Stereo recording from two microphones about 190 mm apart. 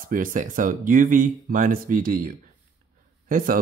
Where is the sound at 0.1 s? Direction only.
45° right (ahead or behind).